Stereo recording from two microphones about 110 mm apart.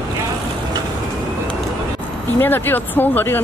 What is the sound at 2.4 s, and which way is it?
Speech, 20° left (ahead or behind).